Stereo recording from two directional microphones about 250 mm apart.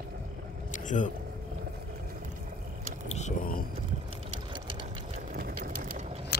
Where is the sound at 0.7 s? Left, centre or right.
Left.